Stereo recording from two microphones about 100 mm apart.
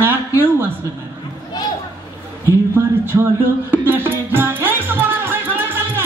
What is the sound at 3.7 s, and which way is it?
Music, 20° right (ahead or behind).